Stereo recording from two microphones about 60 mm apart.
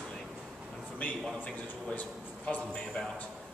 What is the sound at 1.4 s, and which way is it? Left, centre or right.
A man's voice, left.